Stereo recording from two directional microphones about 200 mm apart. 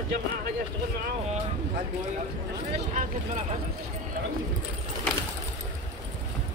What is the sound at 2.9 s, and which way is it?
Speech, 35° right (ahead or behind).